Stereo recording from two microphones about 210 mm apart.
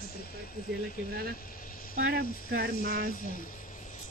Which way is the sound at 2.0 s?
45° right (ahead or behind).